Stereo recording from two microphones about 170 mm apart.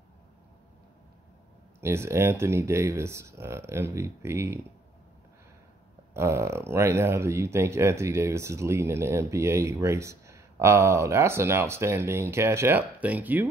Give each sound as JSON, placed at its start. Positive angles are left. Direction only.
{"t": 1.8, "sound": "speech", "side_deg": -15}
{"t": 6.1, "sound": "speech", "side_deg": -15}